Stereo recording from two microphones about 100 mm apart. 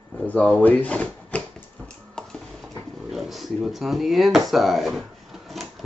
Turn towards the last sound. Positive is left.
turn(degrees=0)  # may be behind; listen again after turning